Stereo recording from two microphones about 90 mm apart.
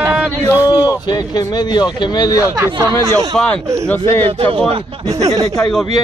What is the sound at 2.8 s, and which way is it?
Speech, 40° right (ahead or behind).